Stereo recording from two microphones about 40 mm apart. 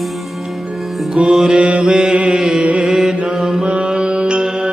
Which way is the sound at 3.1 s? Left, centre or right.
Right.